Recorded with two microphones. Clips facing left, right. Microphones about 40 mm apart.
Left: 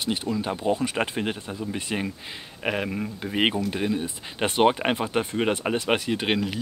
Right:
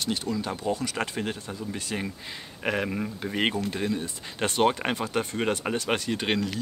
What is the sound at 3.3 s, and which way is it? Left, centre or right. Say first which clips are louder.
Speech: left 4 dB; centre.